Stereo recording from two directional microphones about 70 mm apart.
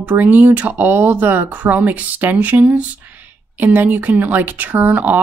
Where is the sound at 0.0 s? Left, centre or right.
Right.